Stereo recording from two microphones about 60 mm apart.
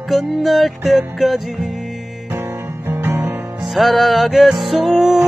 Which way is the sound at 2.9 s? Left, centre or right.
Right.